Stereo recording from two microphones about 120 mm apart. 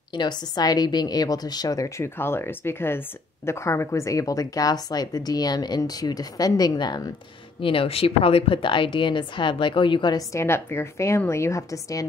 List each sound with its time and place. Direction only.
0.1 s speech: 40° left (ahead or behind)
7.6 s a woman's voice: 50° left (ahead or behind)
10.3 s a woman's voice: 20° left (ahead or behind)